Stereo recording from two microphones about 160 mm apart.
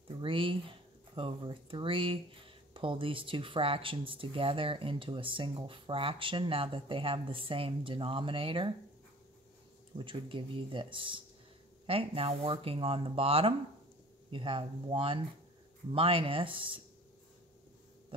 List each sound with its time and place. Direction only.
0.1 s speech: 35° right (ahead or behind)
9.9 s speech: 30° right (ahead or behind)